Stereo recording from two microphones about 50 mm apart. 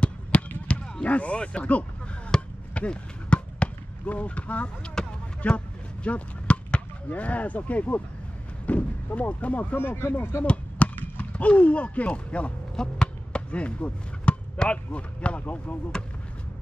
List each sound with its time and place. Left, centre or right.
0.3 s basketball bounce: left
0.7 s speech: left
2.3 s chop: centre
2.7 s basketball bounce: left
5.0 s a sound: centre
5.4 s a man's voice: left
9.9 s speech: left
10.4 s basketball bounce: left
11.0 s speech: left